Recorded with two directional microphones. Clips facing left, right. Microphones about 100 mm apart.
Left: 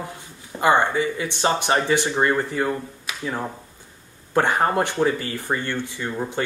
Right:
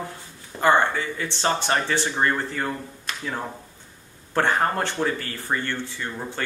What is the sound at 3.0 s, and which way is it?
Finger snapping, 10° left (ahead or behind).